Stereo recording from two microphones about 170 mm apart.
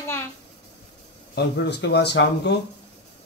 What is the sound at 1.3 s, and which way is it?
Speech, 90° left.